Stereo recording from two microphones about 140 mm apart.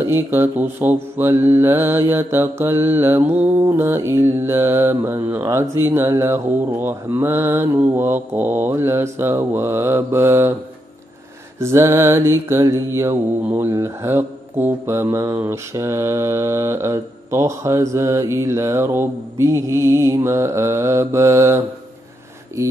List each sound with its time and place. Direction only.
0.0 s mantra: 15° right (ahead or behind)
11.6 s mantra: 20° right (ahead or behind)